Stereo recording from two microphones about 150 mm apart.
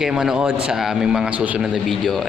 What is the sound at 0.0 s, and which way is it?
A man's voice, 5° right (ahead or behind).